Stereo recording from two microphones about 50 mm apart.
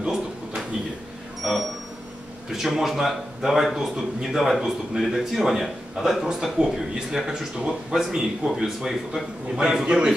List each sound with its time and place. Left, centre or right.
1.4 s a man's voice: centre